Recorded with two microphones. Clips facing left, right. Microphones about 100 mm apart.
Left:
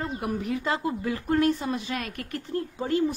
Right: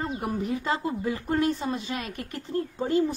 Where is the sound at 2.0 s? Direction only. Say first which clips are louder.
Left 1 dB; 60° left (ahead or behind).